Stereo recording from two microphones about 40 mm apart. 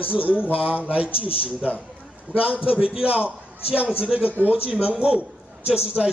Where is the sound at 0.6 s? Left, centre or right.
Right.